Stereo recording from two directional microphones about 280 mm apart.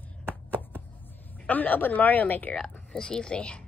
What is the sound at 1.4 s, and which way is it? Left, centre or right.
Speech, centre.